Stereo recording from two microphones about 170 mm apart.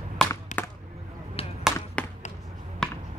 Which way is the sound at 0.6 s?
10° left (ahead or behind).